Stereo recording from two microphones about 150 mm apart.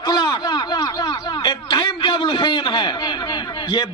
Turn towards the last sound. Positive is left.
turn(degrees=30)  # may be behind; listen again after turning